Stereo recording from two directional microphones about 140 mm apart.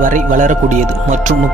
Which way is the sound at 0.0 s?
65° right (ahead or behind).